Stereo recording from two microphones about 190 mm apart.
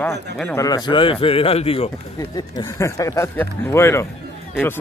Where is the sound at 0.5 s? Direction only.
20° left (ahead or behind).